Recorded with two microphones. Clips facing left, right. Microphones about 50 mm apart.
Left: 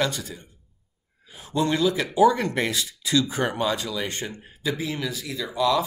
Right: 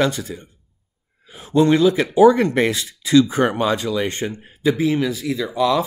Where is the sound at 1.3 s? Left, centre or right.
Right.